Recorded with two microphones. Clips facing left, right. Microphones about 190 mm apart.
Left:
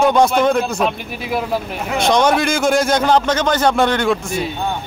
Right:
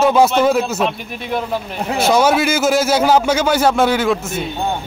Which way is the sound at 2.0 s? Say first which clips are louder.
Right 1 dB; 5° right (ahead or behind).